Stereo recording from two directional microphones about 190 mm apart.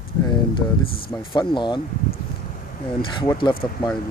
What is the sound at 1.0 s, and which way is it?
Speech, 20° left (ahead or behind).